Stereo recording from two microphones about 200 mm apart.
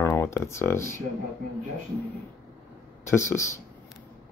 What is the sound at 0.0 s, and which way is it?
Speech, 10° left (ahead or behind).